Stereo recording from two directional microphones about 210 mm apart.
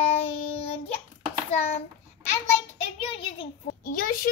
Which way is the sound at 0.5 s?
30° left (ahead or behind).